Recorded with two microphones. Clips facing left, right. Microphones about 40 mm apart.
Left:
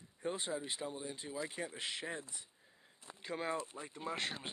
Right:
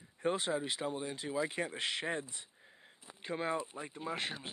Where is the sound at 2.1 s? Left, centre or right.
Right.